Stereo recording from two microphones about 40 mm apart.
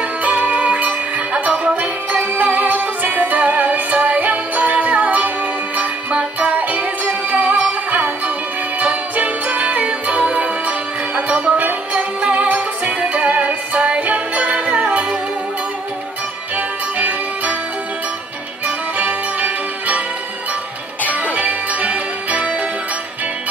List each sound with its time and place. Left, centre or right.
0.2 s music: right
16.5 s music: right
18.9 s music: right
21.1 s music: right